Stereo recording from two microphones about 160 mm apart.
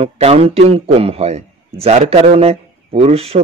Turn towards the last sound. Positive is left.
turn(degrees=-40)  # may be behind; listen again after turning